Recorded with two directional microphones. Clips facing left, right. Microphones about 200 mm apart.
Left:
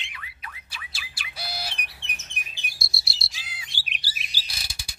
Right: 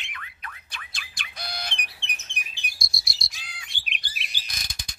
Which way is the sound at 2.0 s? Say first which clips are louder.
Right 1 dB; 40° left (ahead or behind).